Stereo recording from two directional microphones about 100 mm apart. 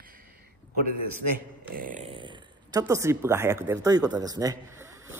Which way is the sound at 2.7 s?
35° right (ahead or behind).